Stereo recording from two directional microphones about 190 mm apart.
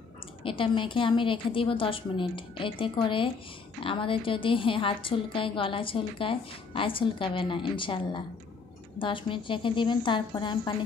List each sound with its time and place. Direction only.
0.4 s a woman's voice: 25° left (ahead or behind)